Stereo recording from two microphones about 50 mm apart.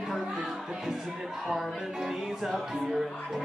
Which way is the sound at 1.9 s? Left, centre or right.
Centre.